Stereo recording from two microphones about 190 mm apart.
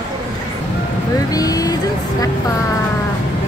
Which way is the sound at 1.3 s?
20° left (ahead or behind).